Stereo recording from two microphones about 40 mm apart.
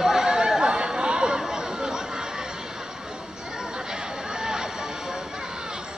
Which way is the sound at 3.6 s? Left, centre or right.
Centre.